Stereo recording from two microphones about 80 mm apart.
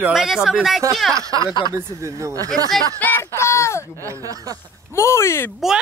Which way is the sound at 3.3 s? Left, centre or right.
Left.